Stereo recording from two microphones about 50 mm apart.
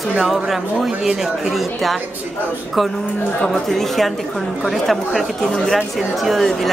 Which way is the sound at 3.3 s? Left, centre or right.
Centre.